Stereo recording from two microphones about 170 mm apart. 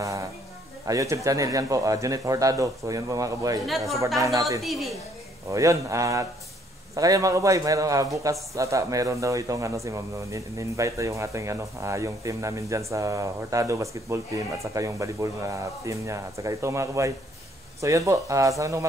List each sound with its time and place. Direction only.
0.0 s a sound: 20° right (ahead or behind)
0.8 s a man's voice: 20° right (ahead or behind)
4.6 s a woman's voice: centre (ahead or behind)
5.5 s a man's voice: 20° right (ahead or behind)